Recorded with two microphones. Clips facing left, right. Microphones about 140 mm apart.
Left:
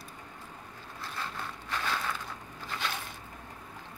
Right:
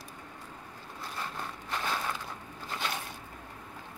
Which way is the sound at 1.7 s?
20° right (ahead or behind).